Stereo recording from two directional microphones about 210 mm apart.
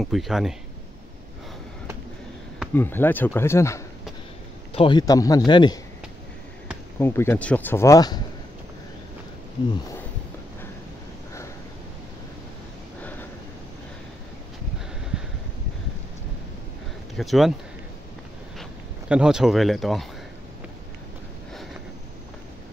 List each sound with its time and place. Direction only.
0.0 s speech: centre (ahead or behind)
2.7 s speech: 10° left (ahead or behind)
7.0 s speech: 10° left (ahead or behind)
15.1 s a sound: 5° right (ahead or behind)
17.1 s speech: centre (ahead or behind)
18.6 s speech: 5° right (ahead or behind)